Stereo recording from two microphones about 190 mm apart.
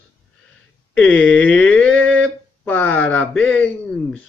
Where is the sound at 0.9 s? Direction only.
5° left (ahead or behind).